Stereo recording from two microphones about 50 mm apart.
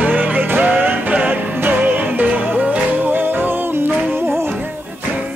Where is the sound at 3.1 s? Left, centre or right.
Right.